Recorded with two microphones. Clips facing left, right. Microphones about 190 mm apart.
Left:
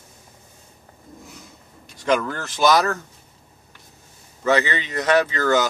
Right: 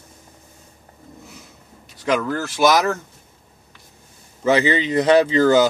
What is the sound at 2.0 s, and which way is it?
Speech, 5° right (ahead or behind).